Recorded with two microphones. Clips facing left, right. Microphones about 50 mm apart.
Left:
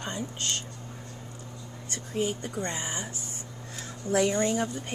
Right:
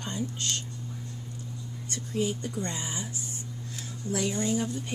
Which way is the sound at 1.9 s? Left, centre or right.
Left.